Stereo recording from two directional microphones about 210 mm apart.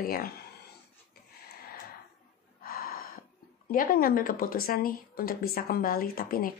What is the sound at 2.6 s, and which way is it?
Gasp, 45° left (ahead or behind).